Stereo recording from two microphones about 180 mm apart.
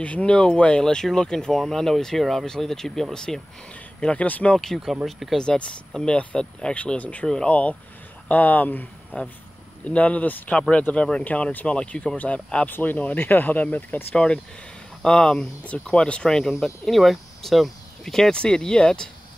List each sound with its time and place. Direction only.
0.0 s speech: 5° left (ahead or behind)